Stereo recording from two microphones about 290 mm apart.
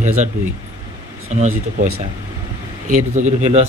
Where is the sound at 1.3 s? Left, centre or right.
Right.